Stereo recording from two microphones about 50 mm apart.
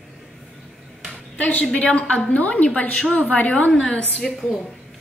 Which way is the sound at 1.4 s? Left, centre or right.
Left.